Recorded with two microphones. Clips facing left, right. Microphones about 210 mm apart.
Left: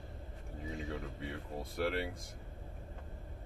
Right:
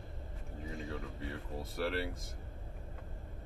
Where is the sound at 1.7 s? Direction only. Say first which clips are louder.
Left 1 dB; centre (ahead or behind).